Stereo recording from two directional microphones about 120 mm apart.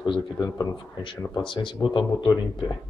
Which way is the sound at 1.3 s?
40° left (ahead or behind).